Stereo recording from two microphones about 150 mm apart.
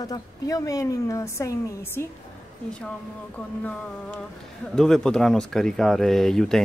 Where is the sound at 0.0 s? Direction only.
25° left (ahead or behind).